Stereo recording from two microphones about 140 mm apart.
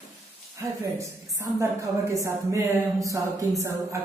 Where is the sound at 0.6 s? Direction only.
20° right (ahead or behind).